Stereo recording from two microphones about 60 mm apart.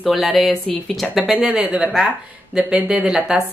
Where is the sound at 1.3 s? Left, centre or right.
Centre.